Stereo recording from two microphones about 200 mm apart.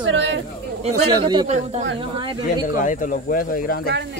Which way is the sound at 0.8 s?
20° right (ahead or behind).